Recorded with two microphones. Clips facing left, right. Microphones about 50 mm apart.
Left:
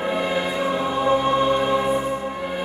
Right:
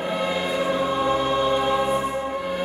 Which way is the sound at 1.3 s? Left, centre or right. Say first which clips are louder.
Left 2 dB; left.